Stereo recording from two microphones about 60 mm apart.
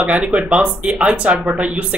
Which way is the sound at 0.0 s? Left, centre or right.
Right.